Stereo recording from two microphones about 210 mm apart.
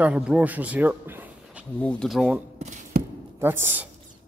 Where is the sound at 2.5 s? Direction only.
35° right (ahead or behind).